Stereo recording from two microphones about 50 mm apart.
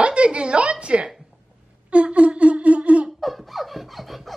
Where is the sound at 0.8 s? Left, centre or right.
Right.